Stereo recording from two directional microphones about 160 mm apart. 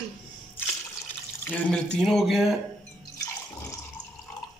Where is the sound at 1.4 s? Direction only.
5° left (ahead or behind).